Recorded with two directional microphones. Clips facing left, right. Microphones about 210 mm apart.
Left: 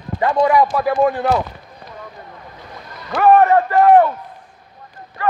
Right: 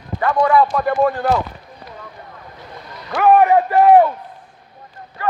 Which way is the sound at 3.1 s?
10° right (ahead or behind).